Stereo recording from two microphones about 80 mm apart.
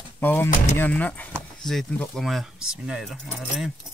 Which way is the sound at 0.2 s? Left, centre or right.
Left.